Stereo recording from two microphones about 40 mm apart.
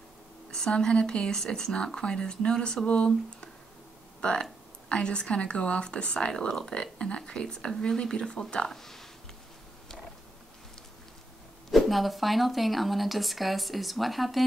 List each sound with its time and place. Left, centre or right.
0.5 s speech: left
1.7 s speech: left
4.2 s speech: left
6.3 s speech: centre
8.7 s speech: centre
11.7 s speech: centre